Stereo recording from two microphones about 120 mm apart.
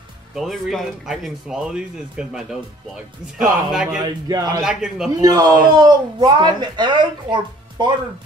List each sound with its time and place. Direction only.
0.4 s speech: centre (ahead or behind)
4.0 s speech: 35° right (ahead or behind)
4.6 s speech: 5° right (ahead or behind)
5.2 s speech: 35° right (ahead or behind)